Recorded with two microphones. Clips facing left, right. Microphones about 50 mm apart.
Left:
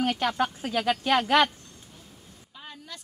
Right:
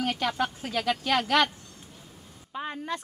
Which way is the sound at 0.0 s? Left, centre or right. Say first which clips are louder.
Left 2 dB; centre.